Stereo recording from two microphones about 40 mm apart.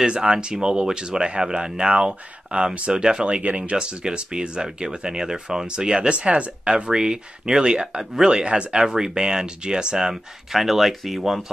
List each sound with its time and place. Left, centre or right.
0.0 s speech: right
10.5 s speech: centre